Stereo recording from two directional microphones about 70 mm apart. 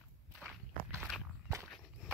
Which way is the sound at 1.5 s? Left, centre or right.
Right.